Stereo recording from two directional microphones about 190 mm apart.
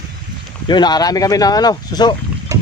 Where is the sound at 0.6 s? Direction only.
20° left (ahead or behind).